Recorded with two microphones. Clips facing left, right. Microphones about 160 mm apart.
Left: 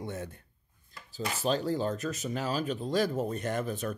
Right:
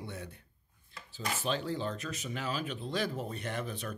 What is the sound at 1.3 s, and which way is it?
Speech, 40° left (ahead or behind).